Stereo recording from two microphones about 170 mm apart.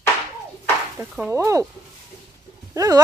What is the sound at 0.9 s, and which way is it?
Speech, 10° right (ahead or behind).